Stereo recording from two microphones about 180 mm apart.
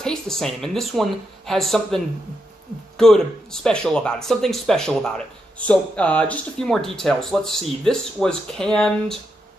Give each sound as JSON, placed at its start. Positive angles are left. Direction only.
{"t": 0.0, "sound": "speech", "side_deg": 5}
{"t": 3.6, "sound": "speech", "side_deg": 5}